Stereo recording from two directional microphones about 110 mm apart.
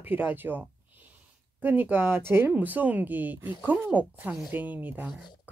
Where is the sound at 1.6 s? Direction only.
15° right (ahead or behind).